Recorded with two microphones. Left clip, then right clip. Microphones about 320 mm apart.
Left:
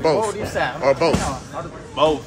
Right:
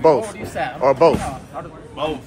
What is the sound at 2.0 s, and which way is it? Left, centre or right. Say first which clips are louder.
Speech: left 7 dB; centre.